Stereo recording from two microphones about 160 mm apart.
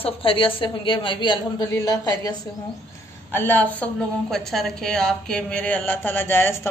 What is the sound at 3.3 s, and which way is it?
A woman's voice, 10° left (ahead or behind).